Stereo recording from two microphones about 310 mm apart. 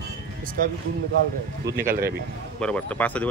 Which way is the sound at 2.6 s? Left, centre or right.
Centre.